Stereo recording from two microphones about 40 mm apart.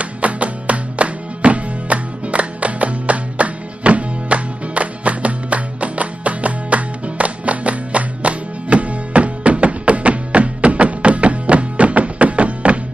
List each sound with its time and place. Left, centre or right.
0.0 s music: right